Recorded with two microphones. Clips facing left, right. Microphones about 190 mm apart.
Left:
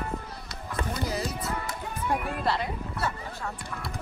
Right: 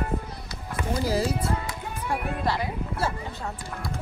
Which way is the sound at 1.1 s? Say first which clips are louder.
Right 6 dB; 30° right (ahead or behind).